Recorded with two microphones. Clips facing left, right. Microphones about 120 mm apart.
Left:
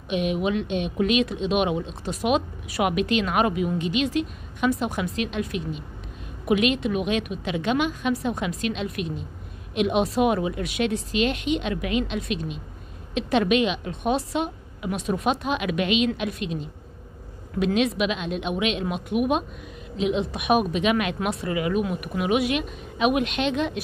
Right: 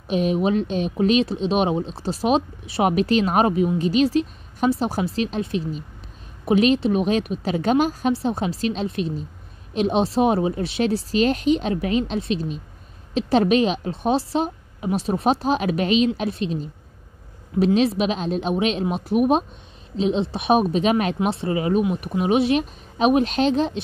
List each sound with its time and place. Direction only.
0.1 s speech: 35° right (ahead or behind)
17.7 s speech: 35° right (ahead or behind)